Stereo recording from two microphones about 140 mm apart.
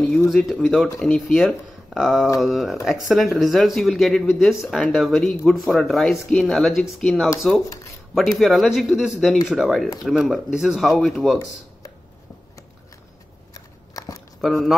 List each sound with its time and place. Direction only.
0.3 s speech: centre (ahead or behind)
13.5 s scissors: 25° left (ahead or behind)
14.4 s speech: centre (ahead or behind)